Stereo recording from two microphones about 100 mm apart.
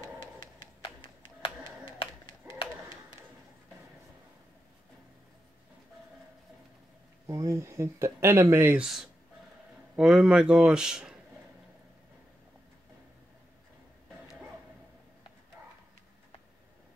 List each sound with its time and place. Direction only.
0.2 s a sound: 55° left (ahead or behind)
7.2 s speech: 30° right (ahead or behind)
8.7 s speech: 5° right (ahead or behind)